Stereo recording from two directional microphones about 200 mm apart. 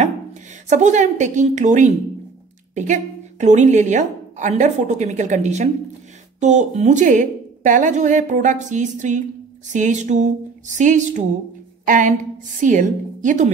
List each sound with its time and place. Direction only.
0.0 s a woman's voice: 35° right (ahead or behind)